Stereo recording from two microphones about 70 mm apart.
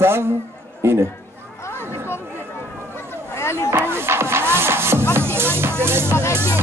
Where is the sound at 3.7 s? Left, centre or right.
Right.